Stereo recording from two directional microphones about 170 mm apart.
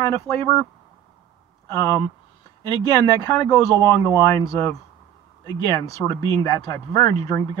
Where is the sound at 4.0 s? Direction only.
20° left (ahead or behind).